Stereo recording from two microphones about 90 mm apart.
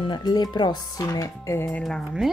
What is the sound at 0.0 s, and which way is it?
Speech, 55° left (ahead or behind).